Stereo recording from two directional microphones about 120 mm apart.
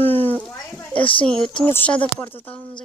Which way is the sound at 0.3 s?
15° left (ahead or behind).